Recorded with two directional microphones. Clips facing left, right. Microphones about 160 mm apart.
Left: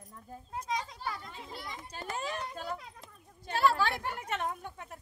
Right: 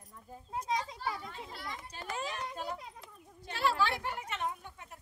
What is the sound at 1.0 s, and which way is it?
Children playing, 5° right (ahead or behind).